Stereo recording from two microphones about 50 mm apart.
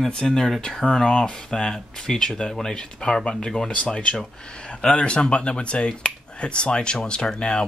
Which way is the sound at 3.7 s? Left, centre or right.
Left.